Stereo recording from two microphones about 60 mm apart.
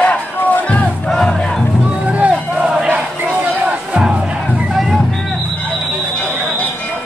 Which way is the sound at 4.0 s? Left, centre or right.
Centre.